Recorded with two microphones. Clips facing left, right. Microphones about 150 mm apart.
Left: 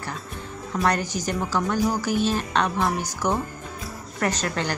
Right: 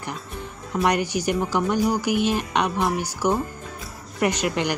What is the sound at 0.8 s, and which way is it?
Speech, 10° right (ahead or behind).